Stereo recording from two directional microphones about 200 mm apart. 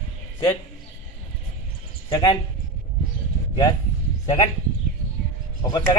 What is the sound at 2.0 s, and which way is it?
Speech, 20° left (ahead or behind).